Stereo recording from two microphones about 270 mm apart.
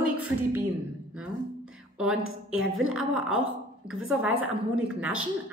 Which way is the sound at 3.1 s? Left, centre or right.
Centre.